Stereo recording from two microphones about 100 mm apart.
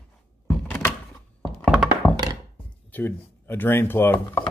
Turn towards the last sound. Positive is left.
turn(degrees=20)  # may be behind; listen again after turning